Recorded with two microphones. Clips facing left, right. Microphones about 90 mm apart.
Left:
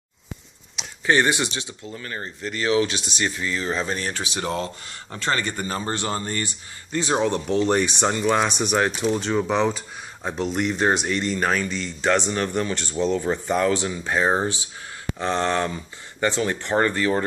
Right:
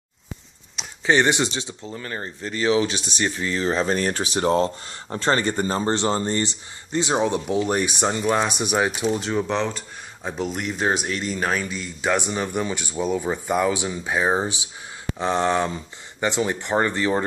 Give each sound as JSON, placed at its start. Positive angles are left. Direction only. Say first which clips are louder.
{"t": 1.0, "sound": "speech", "louder": "right 1 dB", "side_deg": -25}